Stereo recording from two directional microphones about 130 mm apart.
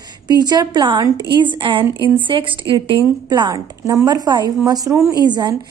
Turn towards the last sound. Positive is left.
turn(degrees=-35)  # may be behind; listen again after turning